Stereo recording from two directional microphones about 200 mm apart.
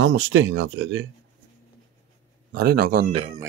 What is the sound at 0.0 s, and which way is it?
Speech, 70° right (ahead or behind).